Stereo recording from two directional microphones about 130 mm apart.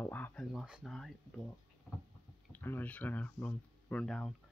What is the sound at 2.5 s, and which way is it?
Speech, 15° left (ahead or behind).